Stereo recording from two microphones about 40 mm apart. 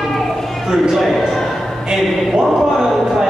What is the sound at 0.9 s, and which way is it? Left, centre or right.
Speech, centre.